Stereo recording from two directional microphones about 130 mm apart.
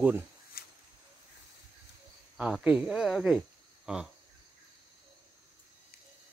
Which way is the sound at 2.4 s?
10° right (ahead or behind).